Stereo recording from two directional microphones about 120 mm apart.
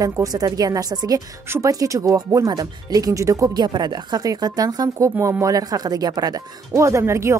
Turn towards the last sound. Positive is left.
turn(degrees=-20)  # may be behind; listen again after turning